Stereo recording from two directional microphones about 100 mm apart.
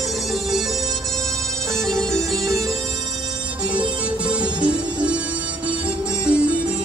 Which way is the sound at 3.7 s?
15° right (ahead or behind).